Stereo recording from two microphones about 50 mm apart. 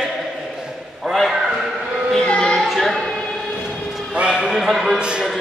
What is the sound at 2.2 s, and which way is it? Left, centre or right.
Music, centre.